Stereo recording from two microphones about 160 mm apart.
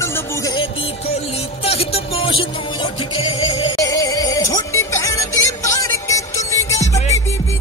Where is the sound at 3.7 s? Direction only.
20° left (ahead or behind).